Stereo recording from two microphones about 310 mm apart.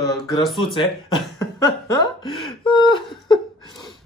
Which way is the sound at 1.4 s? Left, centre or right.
Centre.